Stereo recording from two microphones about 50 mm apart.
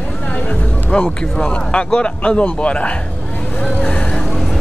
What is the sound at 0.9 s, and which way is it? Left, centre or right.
Speech, left.